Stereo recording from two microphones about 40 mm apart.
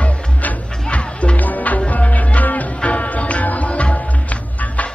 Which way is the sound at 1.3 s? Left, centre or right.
Left.